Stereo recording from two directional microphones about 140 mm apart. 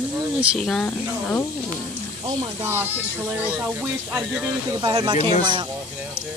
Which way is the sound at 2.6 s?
15° right (ahead or behind).